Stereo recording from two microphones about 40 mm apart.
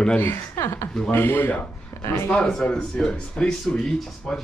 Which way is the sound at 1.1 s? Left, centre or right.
Left.